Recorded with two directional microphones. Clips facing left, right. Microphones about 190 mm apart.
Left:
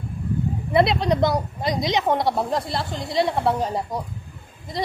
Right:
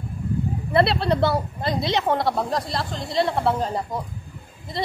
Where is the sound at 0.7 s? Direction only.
15° left (ahead or behind).